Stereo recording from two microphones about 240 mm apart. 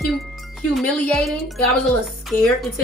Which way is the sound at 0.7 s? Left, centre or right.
Centre.